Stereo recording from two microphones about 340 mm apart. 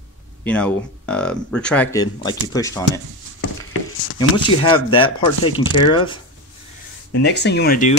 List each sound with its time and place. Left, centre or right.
0.4 s speech: centre
4.2 s speech: centre
7.1 s speech: left